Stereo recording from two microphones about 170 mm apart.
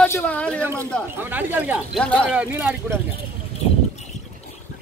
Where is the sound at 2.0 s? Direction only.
5° left (ahead or behind).